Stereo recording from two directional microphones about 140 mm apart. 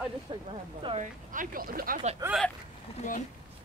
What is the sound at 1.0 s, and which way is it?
Speech, 80° right.